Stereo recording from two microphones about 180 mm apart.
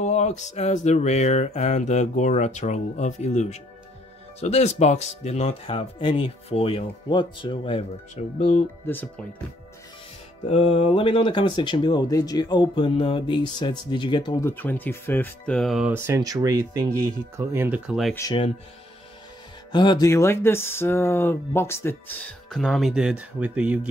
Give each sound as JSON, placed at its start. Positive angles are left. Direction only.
{"t": 0.0, "sound": "a sound", "side_deg": 40}
{"t": 8.8, "sound": "speech", "side_deg": 10}
{"t": 10.5, "sound": "speech", "side_deg": 30}
{"t": 15.9, "sound": "speech", "side_deg": -15}
{"t": 19.7, "sound": "speech", "side_deg": 25}